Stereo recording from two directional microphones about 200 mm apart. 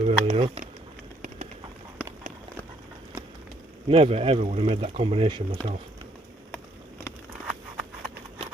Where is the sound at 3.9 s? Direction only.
30° right (ahead or behind).